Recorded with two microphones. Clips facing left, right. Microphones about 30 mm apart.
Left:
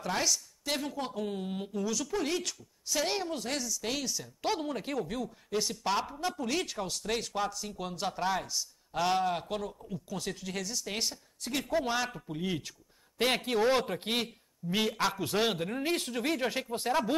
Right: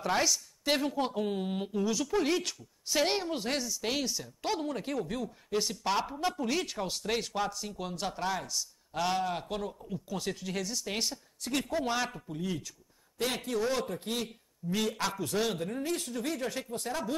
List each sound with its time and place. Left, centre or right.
0.7 s speech: centre
4.4 s speech: centre
12.3 s speech: left
13.2 s speech: left
13.6 s speech: left
15.1 s speech: left